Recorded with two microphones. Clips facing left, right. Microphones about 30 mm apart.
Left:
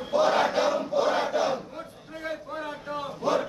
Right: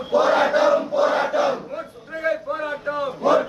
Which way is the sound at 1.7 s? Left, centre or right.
Right.